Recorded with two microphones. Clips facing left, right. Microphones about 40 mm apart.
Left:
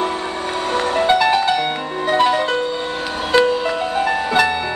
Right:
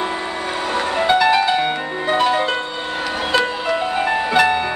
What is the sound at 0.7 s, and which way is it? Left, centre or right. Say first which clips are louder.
Music: left 1 dB; centre.